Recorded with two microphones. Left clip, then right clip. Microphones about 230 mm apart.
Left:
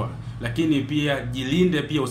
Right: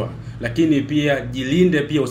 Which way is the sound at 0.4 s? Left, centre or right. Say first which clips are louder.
Right 5 dB; centre.